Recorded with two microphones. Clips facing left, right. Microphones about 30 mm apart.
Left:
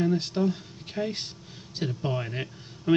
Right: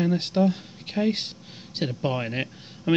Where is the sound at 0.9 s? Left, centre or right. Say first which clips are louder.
Right 4 dB; right.